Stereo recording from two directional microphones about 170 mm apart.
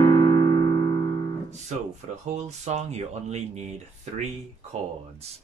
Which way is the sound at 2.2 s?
40° right (ahead or behind).